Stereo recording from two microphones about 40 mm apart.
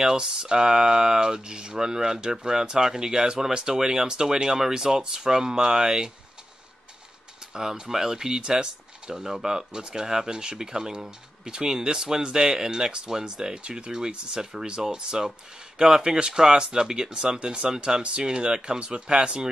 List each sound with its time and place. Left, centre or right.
0.0 s speech: right
7.5 s speech: centre